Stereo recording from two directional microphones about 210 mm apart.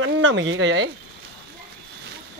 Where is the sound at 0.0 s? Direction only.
65° right (ahead or behind).